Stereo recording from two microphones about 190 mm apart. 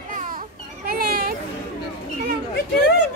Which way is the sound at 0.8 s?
55° right (ahead or behind).